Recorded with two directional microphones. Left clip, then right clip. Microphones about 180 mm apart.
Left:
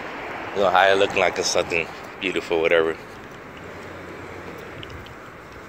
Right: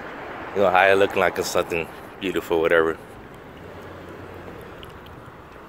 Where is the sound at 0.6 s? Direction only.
50° right (ahead or behind); by 3.0 s 35° right (ahead or behind).